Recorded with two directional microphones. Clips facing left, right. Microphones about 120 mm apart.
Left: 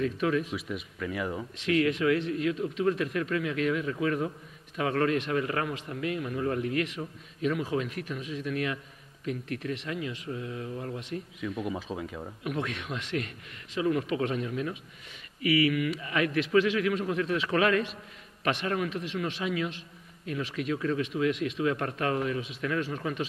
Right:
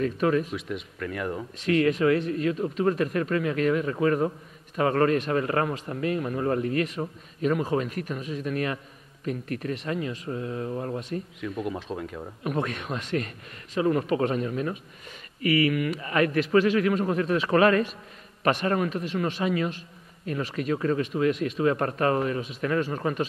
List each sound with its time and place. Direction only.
0.0 s speech: 45° right (ahead or behind)
0.5 s speech: centre (ahead or behind)
1.6 s speech: 45° right (ahead or behind)
11.6 s speech: centre (ahead or behind)
12.4 s speech: 45° right (ahead or behind)